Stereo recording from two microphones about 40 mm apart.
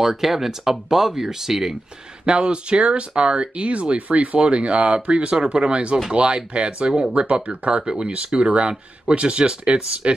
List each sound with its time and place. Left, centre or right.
0.0 s speech: centre
2.2 s speech: right